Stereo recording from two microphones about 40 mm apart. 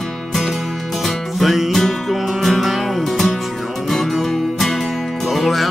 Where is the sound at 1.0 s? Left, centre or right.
Centre.